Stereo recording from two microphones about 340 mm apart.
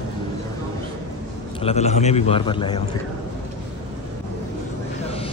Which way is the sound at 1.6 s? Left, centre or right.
Centre.